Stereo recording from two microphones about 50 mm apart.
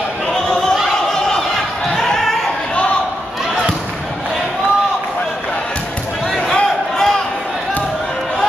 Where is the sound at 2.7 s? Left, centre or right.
Left.